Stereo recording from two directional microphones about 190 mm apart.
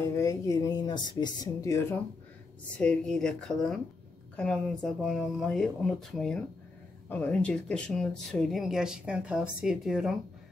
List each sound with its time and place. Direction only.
0.0 s speech: 15° left (ahead or behind)
2.8 s speech: 5° left (ahead or behind)